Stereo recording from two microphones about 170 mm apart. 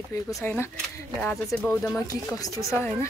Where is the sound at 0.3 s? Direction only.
15° left (ahead or behind).